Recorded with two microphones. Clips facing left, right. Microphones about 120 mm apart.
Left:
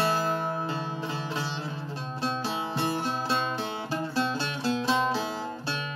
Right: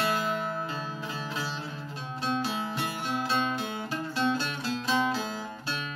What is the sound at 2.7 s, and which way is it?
Music, 30° left (ahead or behind).